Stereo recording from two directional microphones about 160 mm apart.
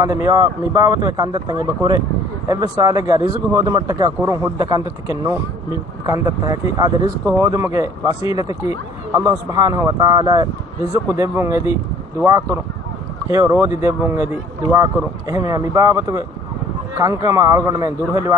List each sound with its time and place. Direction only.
0.0 s speech: 20° right (ahead or behind)